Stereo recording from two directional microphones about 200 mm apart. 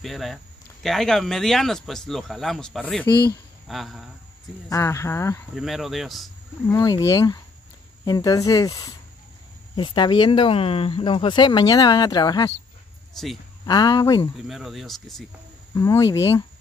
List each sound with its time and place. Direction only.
0.0 s speech: centre (ahead or behind)
4.6 s speech: 15° left (ahead or behind)
5.5 s speech: centre (ahead or behind)
6.7 s speech: 15° left (ahead or behind)
13.7 s speech: 20° left (ahead or behind)
14.5 s speech: centre (ahead or behind)
15.7 s speech: 15° left (ahead or behind)